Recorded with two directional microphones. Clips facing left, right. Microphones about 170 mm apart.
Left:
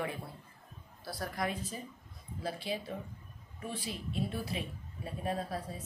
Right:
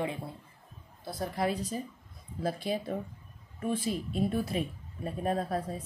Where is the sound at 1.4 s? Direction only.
40° right (ahead or behind).